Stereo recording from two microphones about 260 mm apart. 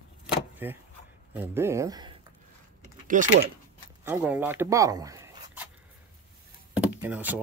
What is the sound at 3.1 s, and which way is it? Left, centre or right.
Speech, right.